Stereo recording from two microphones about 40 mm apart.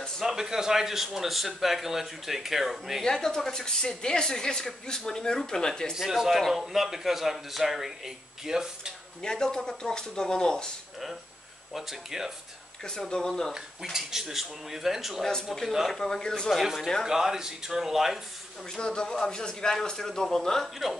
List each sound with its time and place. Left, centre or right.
0.2 s speech: centre
3.0 s speech: centre
5.9 s a man's voice: centre
9.2 s speech: centre
11.7 s speech: centre
12.8 s speech: centre
13.9 s speech: centre
15.9 s speech: centre
17.0 s speech: centre
18.8 s speech: centre